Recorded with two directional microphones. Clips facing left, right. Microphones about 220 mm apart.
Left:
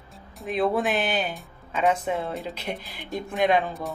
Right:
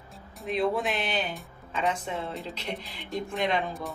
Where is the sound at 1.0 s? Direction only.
50° left (ahead or behind).